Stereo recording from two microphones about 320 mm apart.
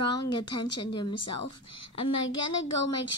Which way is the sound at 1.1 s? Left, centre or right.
Left.